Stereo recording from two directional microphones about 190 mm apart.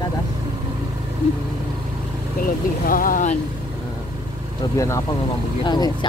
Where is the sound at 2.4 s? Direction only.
50° left (ahead or behind).